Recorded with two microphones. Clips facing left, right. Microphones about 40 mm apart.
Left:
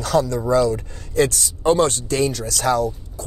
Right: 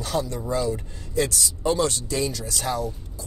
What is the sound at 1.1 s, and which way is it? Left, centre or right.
Speech, left.